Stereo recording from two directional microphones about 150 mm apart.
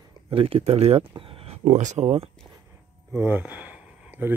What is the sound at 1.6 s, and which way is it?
Speech, 55° right (ahead or behind).